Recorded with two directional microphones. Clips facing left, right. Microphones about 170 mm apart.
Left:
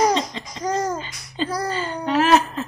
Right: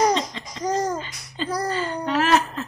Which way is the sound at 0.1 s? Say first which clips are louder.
Left 1 dB; 20° left (ahead or behind).